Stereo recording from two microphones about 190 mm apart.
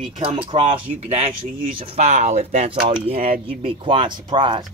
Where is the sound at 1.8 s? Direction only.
30° right (ahead or behind).